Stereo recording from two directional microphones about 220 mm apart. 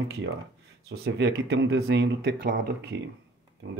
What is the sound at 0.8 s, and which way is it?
Speech, 45° right (ahead or behind).